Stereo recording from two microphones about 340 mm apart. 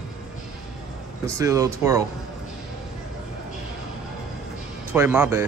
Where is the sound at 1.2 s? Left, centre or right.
Centre.